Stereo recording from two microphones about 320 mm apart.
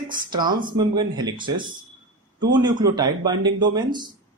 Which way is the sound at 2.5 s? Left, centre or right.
Centre.